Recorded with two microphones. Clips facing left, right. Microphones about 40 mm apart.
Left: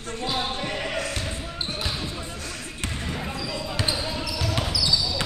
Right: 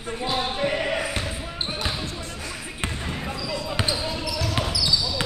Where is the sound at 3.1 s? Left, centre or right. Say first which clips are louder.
Right 1 dB; centre.